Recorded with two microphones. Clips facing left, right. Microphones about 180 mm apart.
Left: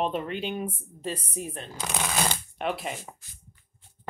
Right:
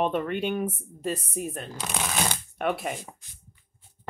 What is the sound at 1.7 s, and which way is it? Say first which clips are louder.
Speech: left 3 dB; centre (ahead or behind).